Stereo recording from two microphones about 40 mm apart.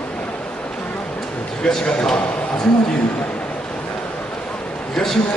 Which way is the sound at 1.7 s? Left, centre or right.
Left.